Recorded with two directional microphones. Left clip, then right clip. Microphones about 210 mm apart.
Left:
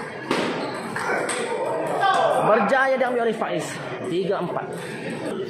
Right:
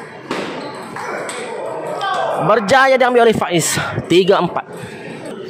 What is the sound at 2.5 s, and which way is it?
Speech, 40° right (ahead or behind).